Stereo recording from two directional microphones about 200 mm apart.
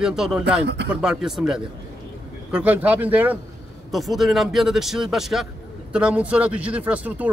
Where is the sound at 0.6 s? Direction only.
55° right (ahead or behind).